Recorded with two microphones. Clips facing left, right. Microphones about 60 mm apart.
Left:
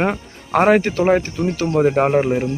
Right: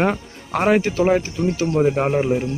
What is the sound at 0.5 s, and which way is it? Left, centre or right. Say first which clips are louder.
Speech: left 3 dB; left.